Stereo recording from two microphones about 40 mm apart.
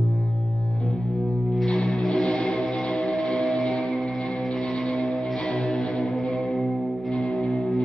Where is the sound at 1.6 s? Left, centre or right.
Left.